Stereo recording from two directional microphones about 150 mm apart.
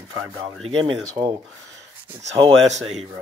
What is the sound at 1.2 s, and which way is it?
Speech, 40° right (ahead or behind).